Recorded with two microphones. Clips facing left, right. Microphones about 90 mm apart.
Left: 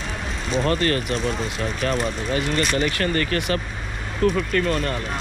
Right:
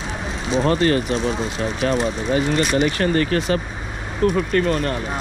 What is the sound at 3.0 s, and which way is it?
Speech, 25° right (ahead or behind).